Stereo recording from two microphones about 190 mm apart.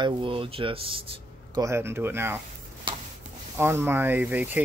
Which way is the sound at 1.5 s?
15° right (ahead or behind).